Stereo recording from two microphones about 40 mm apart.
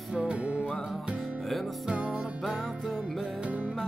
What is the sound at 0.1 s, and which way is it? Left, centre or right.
Music, right.